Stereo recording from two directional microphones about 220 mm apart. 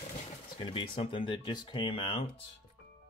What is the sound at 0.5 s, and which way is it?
Speech, 20° left (ahead or behind).